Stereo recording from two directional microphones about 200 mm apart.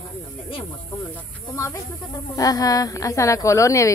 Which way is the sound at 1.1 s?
15° left (ahead or behind).